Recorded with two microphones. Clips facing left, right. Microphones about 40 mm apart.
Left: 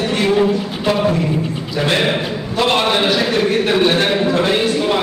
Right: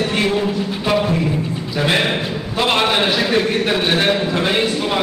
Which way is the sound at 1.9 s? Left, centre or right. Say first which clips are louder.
Left 1 dB; centre.